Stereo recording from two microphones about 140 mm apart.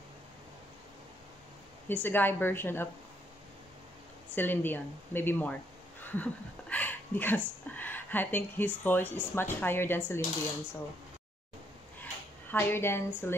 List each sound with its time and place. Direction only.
1.9 s speech: 15° left (ahead or behind)
4.4 s speech: 15° left (ahead or behind)
12.0 s a sound: 15° left (ahead or behind)